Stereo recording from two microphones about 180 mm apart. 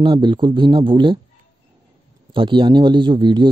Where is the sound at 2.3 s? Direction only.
25° right (ahead or behind).